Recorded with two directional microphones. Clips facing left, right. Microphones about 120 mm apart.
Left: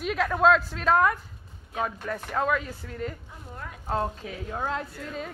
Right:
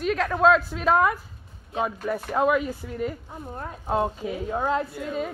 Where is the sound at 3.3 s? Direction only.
40° right (ahead or behind).